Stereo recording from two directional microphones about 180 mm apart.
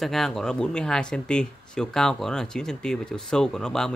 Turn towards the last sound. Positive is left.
turn(degrees=5)  # may be behind; listen again after turning